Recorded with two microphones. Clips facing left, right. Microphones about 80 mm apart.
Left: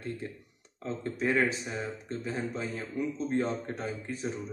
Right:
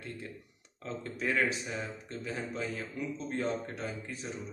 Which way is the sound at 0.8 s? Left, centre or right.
Left.